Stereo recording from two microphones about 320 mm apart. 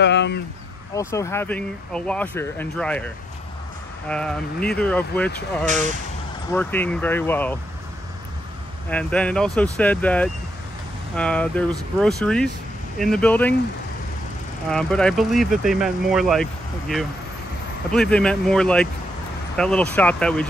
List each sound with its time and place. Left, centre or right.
0.0 s a sound: left
0.9 s speech: centre
4.1 s speech: centre
8.9 s speech: centre
14.7 s speech: centre
17.9 s speech: centre